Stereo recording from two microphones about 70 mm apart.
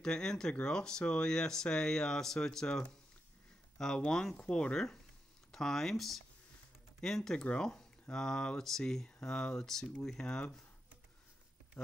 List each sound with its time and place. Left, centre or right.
0.0 s speech: centre